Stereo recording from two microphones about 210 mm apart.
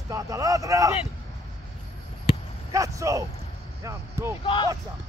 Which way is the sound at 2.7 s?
15° right (ahead or behind).